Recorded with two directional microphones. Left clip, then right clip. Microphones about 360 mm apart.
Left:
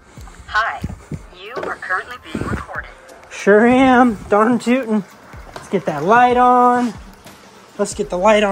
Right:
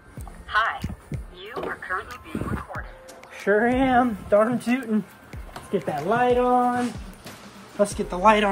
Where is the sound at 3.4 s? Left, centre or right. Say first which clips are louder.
Left 9 dB; centre.